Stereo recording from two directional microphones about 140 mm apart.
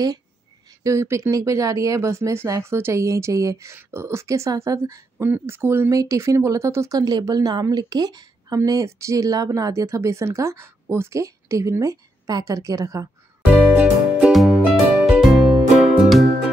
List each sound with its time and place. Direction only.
0.8 s speech: 20° right (ahead or behind)
13.6 s music: 5° right (ahead or behind)